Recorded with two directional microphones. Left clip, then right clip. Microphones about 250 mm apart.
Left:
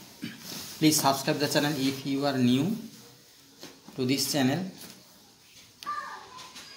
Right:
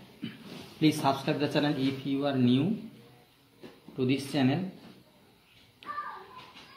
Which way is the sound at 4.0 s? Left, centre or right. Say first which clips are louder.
Left 2 dB; left.